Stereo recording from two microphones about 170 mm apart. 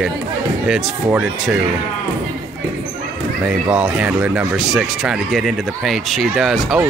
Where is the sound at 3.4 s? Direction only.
5° right (ahead or behind).